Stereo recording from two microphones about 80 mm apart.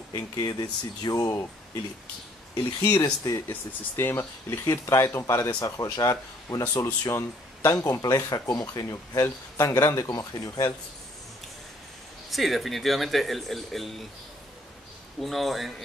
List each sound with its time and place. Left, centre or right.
0.1 s speech: left
2.8 s speech: left
3.4 s speech: left
5.6 s speech: left
12.3 s speech: centre
15.1 s speech: centre